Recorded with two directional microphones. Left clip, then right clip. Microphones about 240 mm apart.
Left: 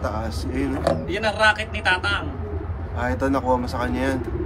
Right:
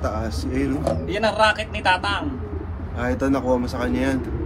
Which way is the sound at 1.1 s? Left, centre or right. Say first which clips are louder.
Right 2 dB; centre.